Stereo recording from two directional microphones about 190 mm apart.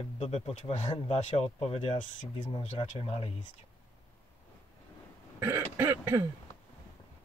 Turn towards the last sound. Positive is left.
turn(degrees=-15)  # may be behind; listen again after turning